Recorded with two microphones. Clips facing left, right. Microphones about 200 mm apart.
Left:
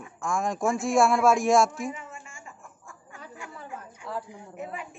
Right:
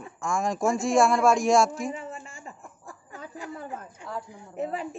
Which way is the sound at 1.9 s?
35° right (ahead or behind).